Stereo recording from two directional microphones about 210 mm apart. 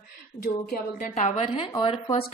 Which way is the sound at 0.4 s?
45° left (ahead or behind).